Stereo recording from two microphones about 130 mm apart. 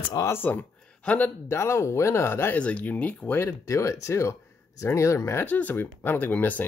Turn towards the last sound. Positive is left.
turn(degrees=15)  # may be behind; listen again after turning